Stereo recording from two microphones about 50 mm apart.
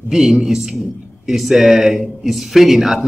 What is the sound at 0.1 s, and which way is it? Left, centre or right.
A man's voice, centre.